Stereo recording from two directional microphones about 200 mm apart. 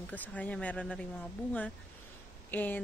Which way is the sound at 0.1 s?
5° left (ahead or behind).